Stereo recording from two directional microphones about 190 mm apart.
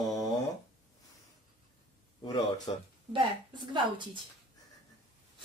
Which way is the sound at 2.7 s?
30° left (ahead or behind).